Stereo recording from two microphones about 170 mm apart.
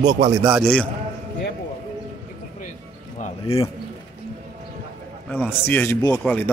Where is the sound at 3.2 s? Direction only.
35° left (ahead or behind).